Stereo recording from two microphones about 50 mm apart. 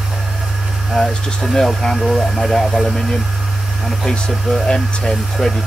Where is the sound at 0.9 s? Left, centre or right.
Centre.